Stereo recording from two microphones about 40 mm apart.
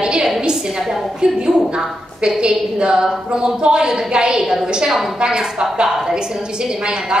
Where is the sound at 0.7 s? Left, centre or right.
Centre.